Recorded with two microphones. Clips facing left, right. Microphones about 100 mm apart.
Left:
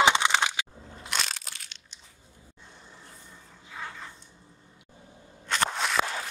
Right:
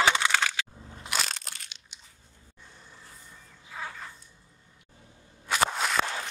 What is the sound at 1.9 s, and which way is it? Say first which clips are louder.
Crunch: even; 10° right (ahead or behind).